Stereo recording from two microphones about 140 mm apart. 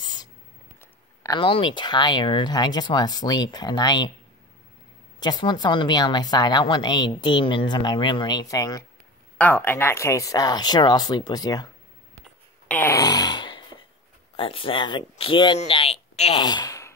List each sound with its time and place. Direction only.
0.0 s a sound: 30° left (ahead or behind)
1.3 s a woman's voice: 35° left (ahead or behind)
5.2 s a woman's voice: 30° left (ahead or behind)
9.4 s speech: 15° left (ahead or behind)
12.6 s a sound: 15° left (ahead or behind); by 13.7 s 35° left (ahead or behind)
14.3 s speech: 40° left (ahead or behind)
16.3 s speech: 30° left (ahead or behind)